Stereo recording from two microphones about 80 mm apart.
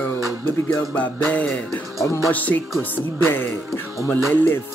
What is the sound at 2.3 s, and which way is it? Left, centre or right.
Speech, centre.